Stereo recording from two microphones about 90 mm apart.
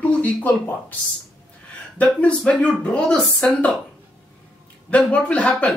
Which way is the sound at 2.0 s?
15° left (ahead or behind).